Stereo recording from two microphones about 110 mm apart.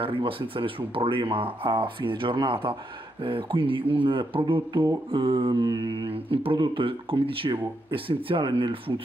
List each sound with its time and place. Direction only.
0.0 s speech: 55° right (ahead or behind)